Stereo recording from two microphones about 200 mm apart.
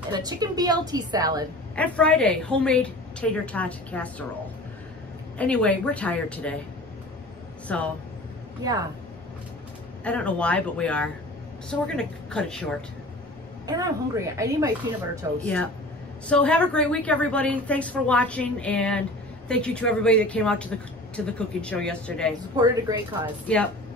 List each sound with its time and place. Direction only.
0.1 s a woman's voice: 20° right (ahead or behind)
1.8 s a woman's voice: 5° left (ahead or behind)
5.4 s a woman's voice: 5° left (ahead or behind)
7.6 s speech: 5° left (ahead or behind)
10.0 s a woman's voice: 5° left (ahead or behind)
13.7 s speech: 20° right (ahead or behind)
15.4 s a woman's voice: 5° left (ahead or behind)
22.6 s a woman's voice: 20° right (ahead or behind)
23.4 s a woman's voice: 5° left (ahead or behind)